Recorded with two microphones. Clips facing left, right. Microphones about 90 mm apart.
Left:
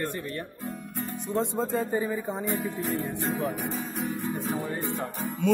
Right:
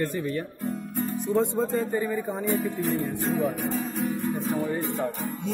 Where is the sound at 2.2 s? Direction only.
Centre (ahead or behind).